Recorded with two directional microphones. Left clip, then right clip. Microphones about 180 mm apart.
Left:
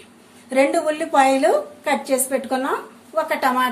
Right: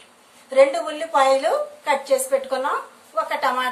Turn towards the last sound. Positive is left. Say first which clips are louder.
# left 2 dB
turn(degrees=25)  # may be behind; listen again after turning